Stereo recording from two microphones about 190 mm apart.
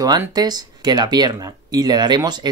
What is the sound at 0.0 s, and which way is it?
Speech, 20° right (ahead or behind).